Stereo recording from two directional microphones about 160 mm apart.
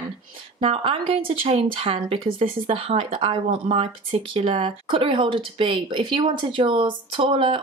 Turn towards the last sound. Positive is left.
turn(degrees=-35)  # may be behind; listen again after turning